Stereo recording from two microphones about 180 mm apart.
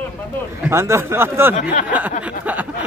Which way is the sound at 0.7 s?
15° right (ahead or behind).